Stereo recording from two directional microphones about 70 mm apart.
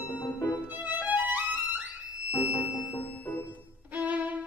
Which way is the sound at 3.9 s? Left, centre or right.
Right.